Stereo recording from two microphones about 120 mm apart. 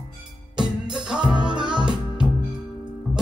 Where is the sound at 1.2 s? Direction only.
40° right (ahead or behind).